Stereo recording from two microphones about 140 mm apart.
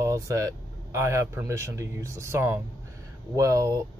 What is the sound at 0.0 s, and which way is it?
Speech, 20° right (ahead or behind).